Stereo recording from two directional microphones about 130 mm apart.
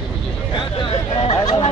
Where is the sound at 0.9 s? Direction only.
45° left (ahead or behind).